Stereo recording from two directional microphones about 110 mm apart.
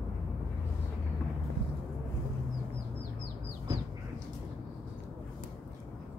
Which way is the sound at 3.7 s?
35° right (ahead or behind).